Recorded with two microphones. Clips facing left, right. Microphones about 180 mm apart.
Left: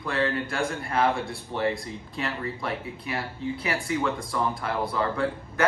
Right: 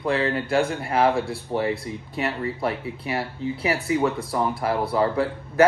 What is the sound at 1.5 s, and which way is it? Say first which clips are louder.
Speech: right 3 dB; 60° right (ahead or behind).